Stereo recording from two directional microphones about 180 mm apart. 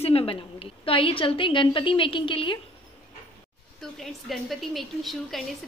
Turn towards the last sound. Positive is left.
turn(degrees=0)  # may be behind; listen again after turning